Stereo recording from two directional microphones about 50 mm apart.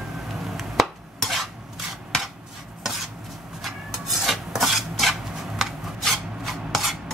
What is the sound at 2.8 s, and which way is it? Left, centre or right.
Rub, centre.